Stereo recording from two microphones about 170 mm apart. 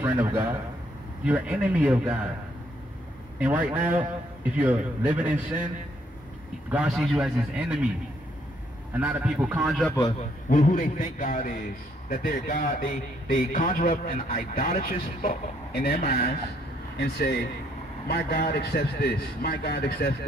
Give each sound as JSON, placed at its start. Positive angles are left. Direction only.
{"t": 0.0, "sound": "a man's voice", "side_deg": -10}
{"t": 3.3, "sound": "a man's voice", "side_deg": -10}
{"t": 6.7, "sound": "a man's voice", "side_deg": -5}
{"t": 9.0, "sound": "a man's voice", "side_deg": -10}
{"t": 10.5, "sound": "a man's voice", "side_deg": 50}